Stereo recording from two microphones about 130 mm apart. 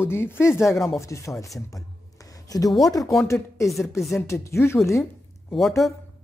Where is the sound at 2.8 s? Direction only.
25° left (ahead or behind).